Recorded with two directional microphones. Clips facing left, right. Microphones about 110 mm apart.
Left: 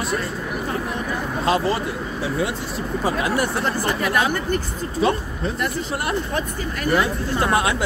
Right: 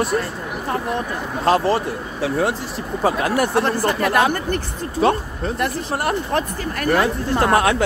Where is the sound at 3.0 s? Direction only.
50° right (ahead or behind).